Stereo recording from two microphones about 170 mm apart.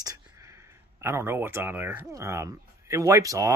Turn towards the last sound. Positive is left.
turn(degrees=-20)  # may be behind; listen again after turning